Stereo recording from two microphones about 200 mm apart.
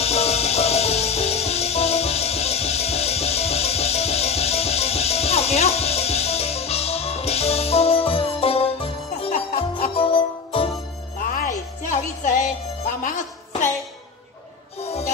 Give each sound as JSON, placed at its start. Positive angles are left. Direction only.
{"t": 0.0, "sound": "music", "side_deg": 30}
{"t": 11.1, "sound": "music", "side_deg": 45}
{"t": 14.8, "sound": "music", "side_deg": 30}